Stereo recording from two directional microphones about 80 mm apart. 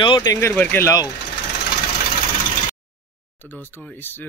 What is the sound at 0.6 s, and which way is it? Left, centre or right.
Speech, left.